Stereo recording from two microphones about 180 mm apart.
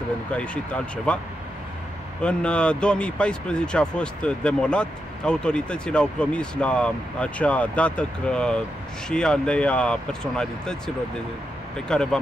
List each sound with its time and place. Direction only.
1.1 s speech: 5° left (ahead or behind)
2.2 s speech: 5° left (ahead or behind)
11.9 s speech: 5° left (ahead or behind)